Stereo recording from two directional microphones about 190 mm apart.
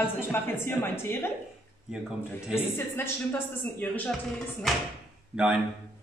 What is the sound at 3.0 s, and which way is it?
A woman's voice, 10° left (ahead or behind).